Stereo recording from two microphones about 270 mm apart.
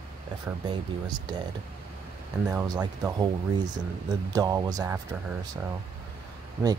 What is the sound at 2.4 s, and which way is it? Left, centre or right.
Speech, centre.